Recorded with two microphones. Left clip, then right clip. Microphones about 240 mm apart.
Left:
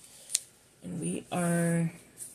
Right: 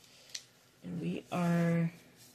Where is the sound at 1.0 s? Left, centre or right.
Left.